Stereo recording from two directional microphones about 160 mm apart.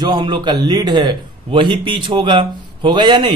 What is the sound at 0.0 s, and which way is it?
A man's voice, 25° right (ahead or behind).